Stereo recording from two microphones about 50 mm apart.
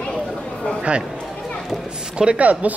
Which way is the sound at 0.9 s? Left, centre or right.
Right.